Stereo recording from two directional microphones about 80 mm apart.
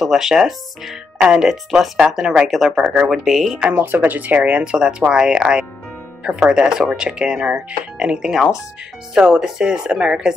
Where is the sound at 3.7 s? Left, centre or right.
Right.